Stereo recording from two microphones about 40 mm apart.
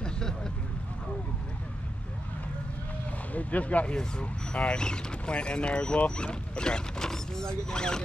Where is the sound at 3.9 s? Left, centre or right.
Left.